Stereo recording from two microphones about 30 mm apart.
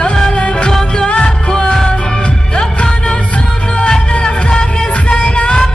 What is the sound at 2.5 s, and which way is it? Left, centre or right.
Music, left.